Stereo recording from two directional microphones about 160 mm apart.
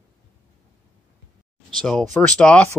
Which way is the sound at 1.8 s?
Centre (ahead or behind).